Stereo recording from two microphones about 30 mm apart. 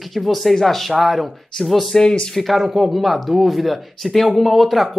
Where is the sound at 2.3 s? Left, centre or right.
Centre.